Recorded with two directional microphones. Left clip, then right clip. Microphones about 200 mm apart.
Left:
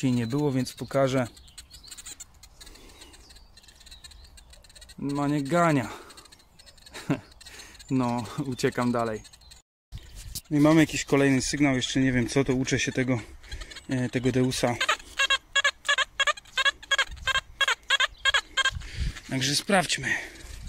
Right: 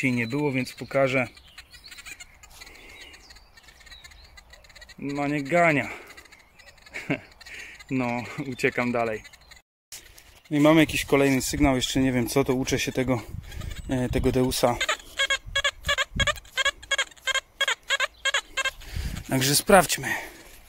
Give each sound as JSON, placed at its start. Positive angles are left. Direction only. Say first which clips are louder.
{"t": 0.3, "sound": "speech", "louder": "right 1 dB", "side_deg": 0}
{"t": 5.5, "sound": "speech", "louder": "right 4 dB", "side_deg": 5}
{"t": 10.5, "sound": "speech", "louder": "right 2 dB", "side_deg": -5}
{"t": 13.7, "sound": "bleat", "louder": "right 3 dB", "side_deg": -25}
{"t": 14.0, "sound": "speech", "louder": "right 2 dB", "side_deg": -10}
{"t": 15.2, "sound": "a sound", "louder": "left 2 dB", "side_deg": -15}
{"t": 19.3, "sound": "speech", "louder": "right 6 dB", "side_deg": -40}
{"t": 20.0, "sound": "speech", "louder": "left 1 dB", "side_deg": -15}